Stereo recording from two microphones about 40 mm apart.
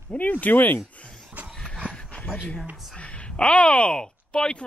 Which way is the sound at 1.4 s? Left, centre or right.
Right.